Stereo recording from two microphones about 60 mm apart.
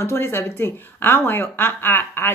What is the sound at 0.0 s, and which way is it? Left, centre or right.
A woman's voice, left.